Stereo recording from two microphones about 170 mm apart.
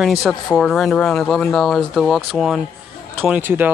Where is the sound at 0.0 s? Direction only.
Centre (ahead or behind).